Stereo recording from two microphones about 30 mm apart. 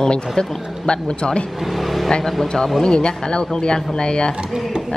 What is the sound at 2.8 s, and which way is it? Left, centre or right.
Speech, left.